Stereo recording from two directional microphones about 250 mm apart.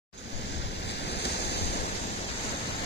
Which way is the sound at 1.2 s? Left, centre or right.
Left.